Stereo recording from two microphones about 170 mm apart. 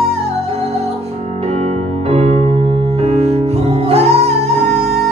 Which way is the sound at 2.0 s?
35° right (ahead or behind).